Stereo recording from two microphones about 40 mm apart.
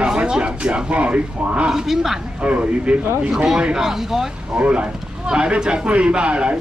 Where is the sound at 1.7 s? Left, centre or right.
Centre.